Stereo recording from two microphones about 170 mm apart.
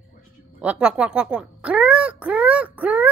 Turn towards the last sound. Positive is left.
turn(degrees=-10)  # may be behind; listen again after turning